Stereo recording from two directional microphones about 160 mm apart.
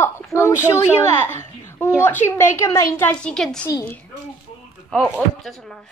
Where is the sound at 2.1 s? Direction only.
15° left (ahead or behind).